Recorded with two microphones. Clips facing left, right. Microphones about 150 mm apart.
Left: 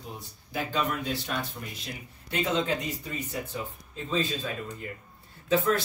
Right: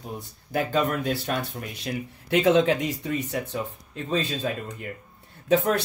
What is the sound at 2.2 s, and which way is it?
Speech, 90° right.